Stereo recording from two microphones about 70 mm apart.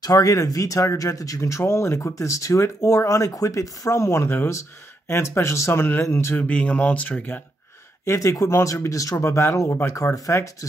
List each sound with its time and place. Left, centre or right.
0.0 s speech: left
6.3 s speech: centre
8.0 s speech: left